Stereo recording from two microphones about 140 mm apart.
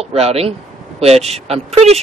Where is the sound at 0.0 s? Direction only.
45° right (ahead or behind).